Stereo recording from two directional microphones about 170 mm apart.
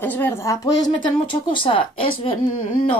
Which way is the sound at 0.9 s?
30° left (ahead or behind).